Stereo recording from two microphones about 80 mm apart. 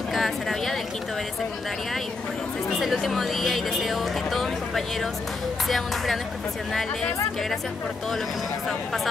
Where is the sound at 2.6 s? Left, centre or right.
Centre.